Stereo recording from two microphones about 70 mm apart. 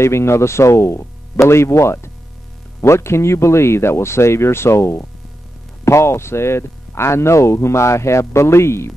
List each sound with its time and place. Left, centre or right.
0.0 s speech: left